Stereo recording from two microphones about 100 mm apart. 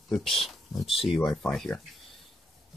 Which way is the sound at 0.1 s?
5° left (ahead or behind).